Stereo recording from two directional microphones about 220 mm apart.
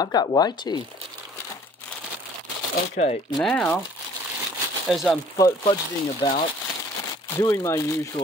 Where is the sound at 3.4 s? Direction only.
5° left (ahead or behind).